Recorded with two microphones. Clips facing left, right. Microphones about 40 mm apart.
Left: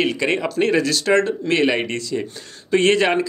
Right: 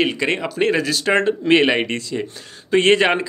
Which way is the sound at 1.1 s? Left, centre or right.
Right.